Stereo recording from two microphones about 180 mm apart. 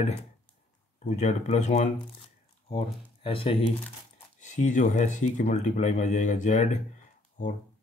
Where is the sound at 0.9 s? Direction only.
40° left (ahead or behind).